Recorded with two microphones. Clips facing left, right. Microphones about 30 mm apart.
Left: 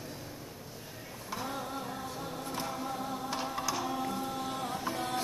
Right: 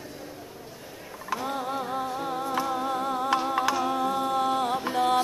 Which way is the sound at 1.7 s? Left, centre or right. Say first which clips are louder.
Right 9 dB; right.